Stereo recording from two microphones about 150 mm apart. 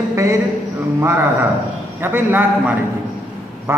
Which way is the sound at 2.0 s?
15° right (ahead or behind).